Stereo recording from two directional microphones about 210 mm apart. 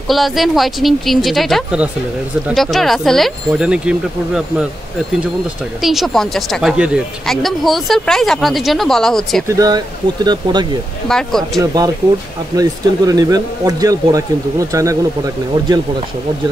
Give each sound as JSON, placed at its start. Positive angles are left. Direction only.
{"t": 0.1, "sound": "a woman's voice", "side_deg": 0}
{"t": 5.8, "sound": "a woman's voice", "side_deg": 0}
{"t": 9.5, "sound": "speech", "side_deg": -20}
{"t": 11.1, "sound": "a woman's voice", "side_deg": 0}
{"t": 11.6, "sound": "speech", "side_deg": -15}